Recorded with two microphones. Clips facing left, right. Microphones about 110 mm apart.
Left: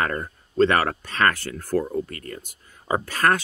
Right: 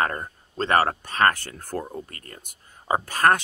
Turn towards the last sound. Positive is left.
turn(degrees=-40)  # may be behind; listen again after turning